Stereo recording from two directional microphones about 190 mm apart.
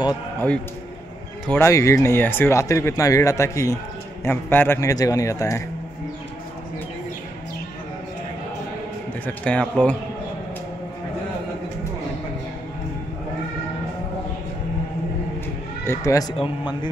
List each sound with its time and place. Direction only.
1.5 s speech: 15° left (ahead or behind)
9.2 s speech: 5° left (ahead or behind)
15.8 s a man's voice: 15° left (ahead or behind)